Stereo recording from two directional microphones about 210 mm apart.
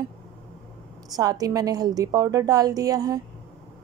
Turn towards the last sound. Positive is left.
turn(degrees=-20)  # may be behind; listen again after turning